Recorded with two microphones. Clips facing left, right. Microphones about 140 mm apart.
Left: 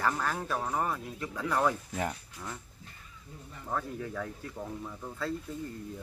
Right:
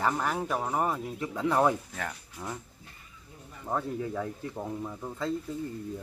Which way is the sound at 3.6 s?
20° right (ahead or behind).